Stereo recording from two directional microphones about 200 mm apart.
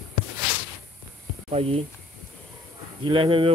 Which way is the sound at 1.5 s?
30° right (ahead or behind).